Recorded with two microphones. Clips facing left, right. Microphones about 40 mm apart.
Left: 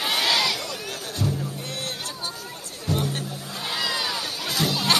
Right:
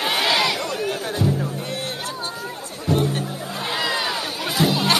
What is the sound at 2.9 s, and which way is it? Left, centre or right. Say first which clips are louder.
Music: right 6 dB; right.